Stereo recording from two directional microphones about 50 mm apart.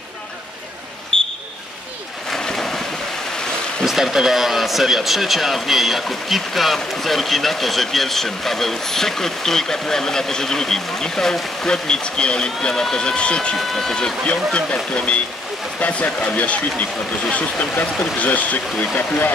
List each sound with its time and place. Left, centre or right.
1.1 s a sound: centre
2.3 s boat: centre
3.8 s speech: centre; by 13.6 s left
13.6 s speech: centre; by 19.3 s left